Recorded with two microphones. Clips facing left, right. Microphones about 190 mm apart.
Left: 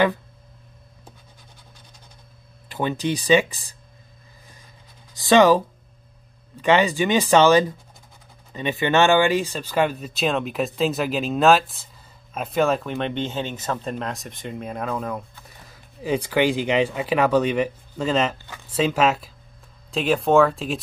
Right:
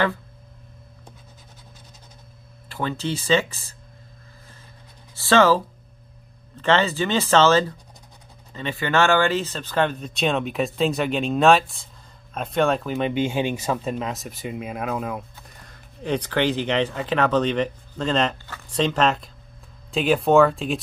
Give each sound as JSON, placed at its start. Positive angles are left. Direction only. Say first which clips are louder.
{"t": 2.7, "sound": "speech", "louder": "left 3 dB", "side_deg": 15}
{"t": 5.1, "sound": "speech", "louder": "left 2 dB", "side_deg": 15}